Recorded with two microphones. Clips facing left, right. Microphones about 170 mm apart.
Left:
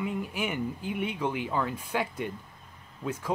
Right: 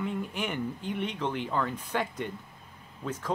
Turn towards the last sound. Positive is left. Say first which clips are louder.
# left 1 dB
turn(degrees=10)  # may be behind; listen again after turning